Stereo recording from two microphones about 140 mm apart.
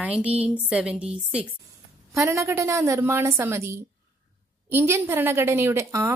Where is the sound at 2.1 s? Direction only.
20° right (ahead or behind).